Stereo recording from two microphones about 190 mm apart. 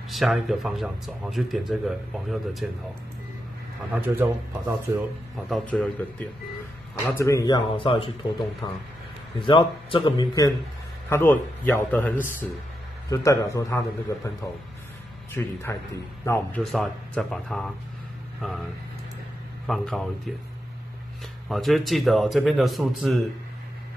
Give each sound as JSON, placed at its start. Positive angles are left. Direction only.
{"t": 0.1, "sound": "speech", "side_deg": 0}
{"t": 3.9, "sound": "speech", "side_deg": -10}
{"t": 5.5, "sound": "speech", "side_deg": 5}
{"t": 7.0, "sound": "a man's voice", "side_deg": 15}
{"t": 16.7, "sound": "speech", "side_deg": 0}
{"t": 19.6, "sound": "speech", "side_deg": 0}
{"t": 21.5, "sound": "speech", "side_deg": 0}